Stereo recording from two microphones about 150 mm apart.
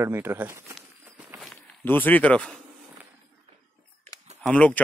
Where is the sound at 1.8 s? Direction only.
10° left (ahead or behind).